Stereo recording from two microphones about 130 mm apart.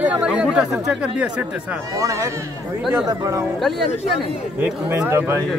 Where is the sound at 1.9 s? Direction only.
25° right (ahead or behind).